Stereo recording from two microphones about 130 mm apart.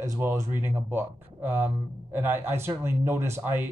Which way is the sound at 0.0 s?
25° right (ahead or behind).